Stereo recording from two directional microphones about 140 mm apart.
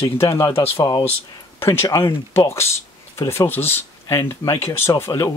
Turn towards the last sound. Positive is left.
turn(degrees=20)  # may be behind; listen again after turning